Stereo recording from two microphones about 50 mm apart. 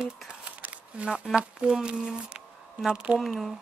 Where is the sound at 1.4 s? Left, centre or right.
Centre.